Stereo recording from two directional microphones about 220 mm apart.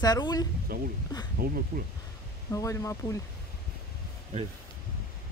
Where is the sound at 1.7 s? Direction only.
40° right (ahead or behind).